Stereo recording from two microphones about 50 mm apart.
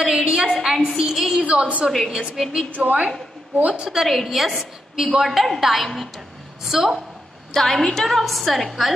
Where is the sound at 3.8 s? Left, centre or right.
Centre.